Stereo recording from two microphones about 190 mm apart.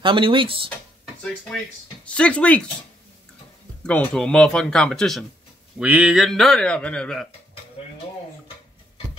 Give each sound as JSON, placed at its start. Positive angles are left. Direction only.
{"t": 0.0, "sound": "speech", "side_deg": -25}
{"t": 2.0, "sound": "speech", "side_deg": 5}
{"t": 3.8, "sound": "speech", "side_deg": 5}